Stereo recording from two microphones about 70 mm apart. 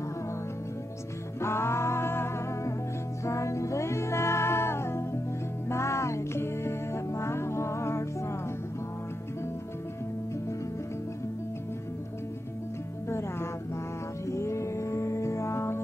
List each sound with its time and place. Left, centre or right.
1.4 s music: left
14.2 s music: left